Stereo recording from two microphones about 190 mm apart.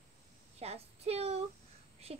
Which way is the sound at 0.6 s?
35° right (ahead or behind).